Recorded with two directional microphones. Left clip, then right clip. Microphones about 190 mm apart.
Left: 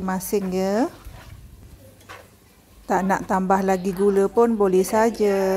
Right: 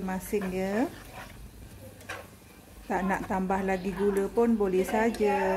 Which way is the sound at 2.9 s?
30° left (ahead or behind).